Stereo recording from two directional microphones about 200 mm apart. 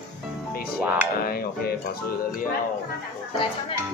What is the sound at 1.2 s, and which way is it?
Speech, 50° left (ahead or behind).